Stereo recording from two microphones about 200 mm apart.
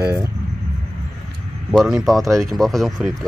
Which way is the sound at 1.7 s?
Centre (ahead or behind).